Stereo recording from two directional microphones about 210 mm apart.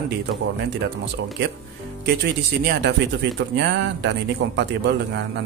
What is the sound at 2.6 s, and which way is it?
Speech, 55° right (ahead or behind).